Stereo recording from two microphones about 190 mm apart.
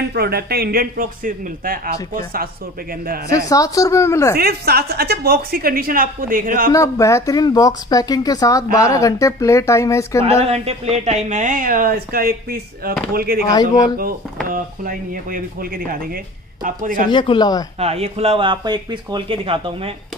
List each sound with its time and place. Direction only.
0.1 s speech: 55° right (ahead or behind)
3.3 s speech: 15° left (ahead or behind)
4.4 s speech: 55° right (ahead or behind)
6.7 s speech: 15° left (ahead or behind)
10.4 s speech: 30° right (ahead or behind); by 13.4 s 50° right (ahead or behind)
13.5 s speech: 20° left (ahead or behind)
14.5 s speech: 45° right (ahead or behind)
17.1 s speech: 25° left (ahead or behind)
17.7 s speech: 30° right (ahead or behind)